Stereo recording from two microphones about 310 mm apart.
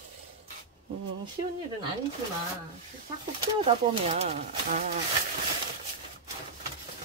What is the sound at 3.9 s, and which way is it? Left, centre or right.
Speech, right.